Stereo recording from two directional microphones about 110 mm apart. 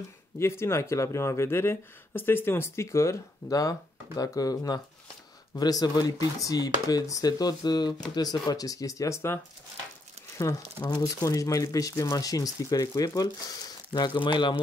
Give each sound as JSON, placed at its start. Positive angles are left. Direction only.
{"t": 0.4, "sound": "speech", "side_deg": 25}